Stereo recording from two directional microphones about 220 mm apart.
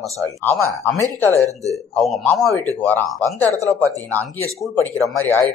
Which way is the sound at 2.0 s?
Centre (ahead or behind).